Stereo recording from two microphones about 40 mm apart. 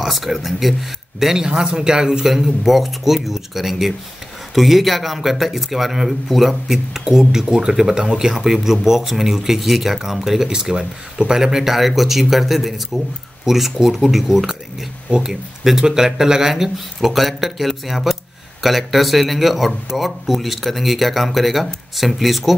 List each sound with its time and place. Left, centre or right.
0.0 s speech: centre
1.5 s speech: right
2.3 s speech: centre
10.5 s speech: centre